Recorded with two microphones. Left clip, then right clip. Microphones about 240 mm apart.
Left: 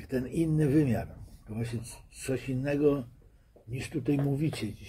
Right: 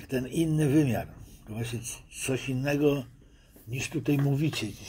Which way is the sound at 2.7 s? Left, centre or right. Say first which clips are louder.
Right 1 dB; right.